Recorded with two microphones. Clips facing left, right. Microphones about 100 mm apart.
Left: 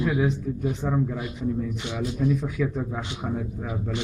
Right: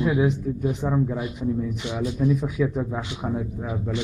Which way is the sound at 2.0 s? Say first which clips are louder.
Right 2 dB; 15° right (ahead or behind).